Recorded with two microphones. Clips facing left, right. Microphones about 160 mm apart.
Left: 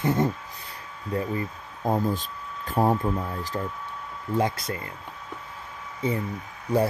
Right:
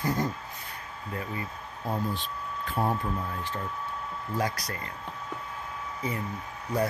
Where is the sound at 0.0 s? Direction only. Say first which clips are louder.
Left 5 dB; 25° left (ahead or behind).